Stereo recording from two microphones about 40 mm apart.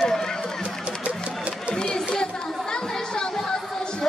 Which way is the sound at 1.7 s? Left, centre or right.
Centre.